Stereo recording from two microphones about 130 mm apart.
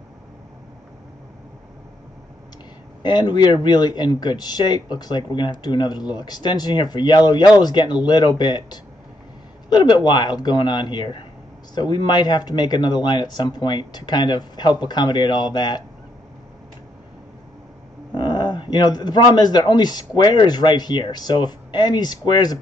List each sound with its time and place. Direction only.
3.0 s speech: 35° left (ahead or behind)
18.1 s speech: 35° left (ahead or behind)